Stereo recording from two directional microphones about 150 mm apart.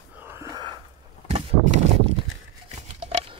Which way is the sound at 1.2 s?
50° right (ahead or behind).